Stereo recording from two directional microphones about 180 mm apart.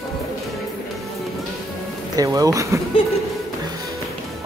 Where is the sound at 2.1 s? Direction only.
20° right (ahead or behind).